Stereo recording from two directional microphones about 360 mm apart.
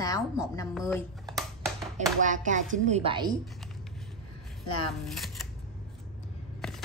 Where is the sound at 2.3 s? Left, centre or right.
Right.